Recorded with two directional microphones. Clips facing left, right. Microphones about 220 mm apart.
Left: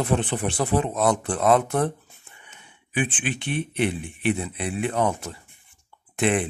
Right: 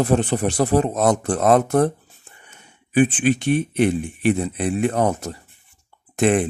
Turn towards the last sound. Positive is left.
turn(degrees=-45)  # may be behind; listen again after turning